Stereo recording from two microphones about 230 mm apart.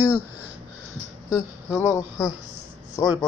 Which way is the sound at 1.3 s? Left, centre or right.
Centre.